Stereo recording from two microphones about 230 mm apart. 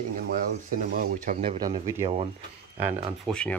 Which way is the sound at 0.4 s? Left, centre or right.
Right.